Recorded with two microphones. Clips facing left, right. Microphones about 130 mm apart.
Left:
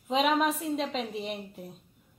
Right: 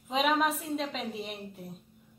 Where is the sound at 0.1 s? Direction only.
Centre (ahead or behind).